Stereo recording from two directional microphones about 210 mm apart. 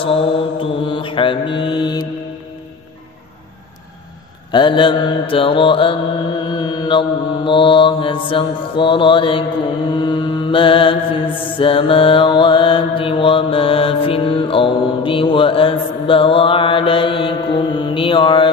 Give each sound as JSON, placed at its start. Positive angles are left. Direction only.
{"t": 0.0, "sound": "mantra", "side_deg": 25}
{"t": 4.5, "sound": "mantra", "side_deg": 20}